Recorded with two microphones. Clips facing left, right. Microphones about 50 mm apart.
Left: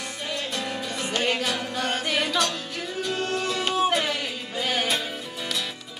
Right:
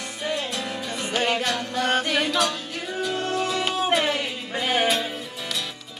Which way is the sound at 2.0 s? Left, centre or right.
Centre.